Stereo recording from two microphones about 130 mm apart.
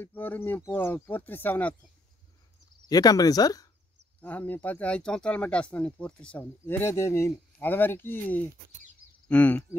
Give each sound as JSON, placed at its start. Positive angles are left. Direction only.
{"t": 0.0, "sound": "speech", "side_deg": 15}
{"t": 2.9, "sound": "speech", "side_deg": 30}
{"t": 4.2, "sound": "speech", "side_deg": 10}